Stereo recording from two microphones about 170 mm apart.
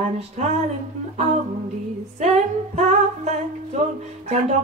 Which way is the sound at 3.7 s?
40° right (ahead or behind).